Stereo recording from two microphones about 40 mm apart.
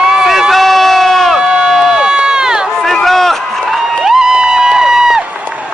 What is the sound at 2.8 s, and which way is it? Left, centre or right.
Run, centre.